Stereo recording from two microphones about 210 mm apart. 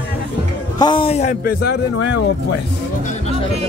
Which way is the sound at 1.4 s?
50° left (ahead or behind).